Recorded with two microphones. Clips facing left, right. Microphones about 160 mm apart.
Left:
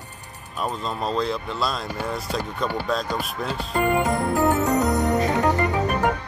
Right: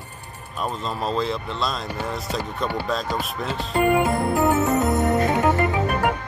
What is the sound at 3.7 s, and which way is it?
Speech, 15° right (ahead or behind).